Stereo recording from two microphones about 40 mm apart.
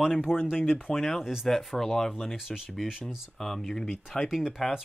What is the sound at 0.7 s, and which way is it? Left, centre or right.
Speech, centre.